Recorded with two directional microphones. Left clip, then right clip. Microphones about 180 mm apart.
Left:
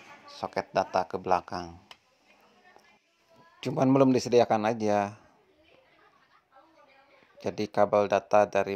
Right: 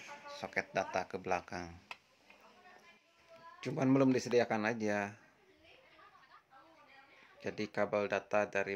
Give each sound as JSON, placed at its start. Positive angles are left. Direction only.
{"t": 0.3, "sound": "speech", "side_deg": 25}
{"t": 3.6, "sound": "speech", "side_deg": 35}
{"t": 7.3, "sound": "speech", "side_deg": 30}